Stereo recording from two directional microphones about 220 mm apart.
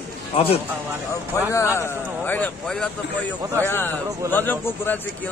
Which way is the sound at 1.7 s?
10° left (ahead or behind).